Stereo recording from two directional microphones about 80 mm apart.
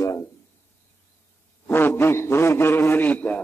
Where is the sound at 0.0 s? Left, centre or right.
Left.